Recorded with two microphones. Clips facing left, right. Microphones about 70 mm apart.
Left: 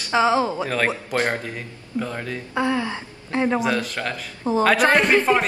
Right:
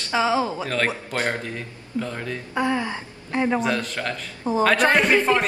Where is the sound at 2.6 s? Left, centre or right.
Right.